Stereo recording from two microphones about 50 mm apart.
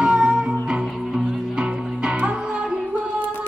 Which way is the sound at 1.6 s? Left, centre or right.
Centre.